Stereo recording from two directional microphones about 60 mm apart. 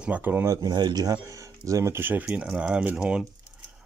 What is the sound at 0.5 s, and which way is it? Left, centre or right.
Speech, right.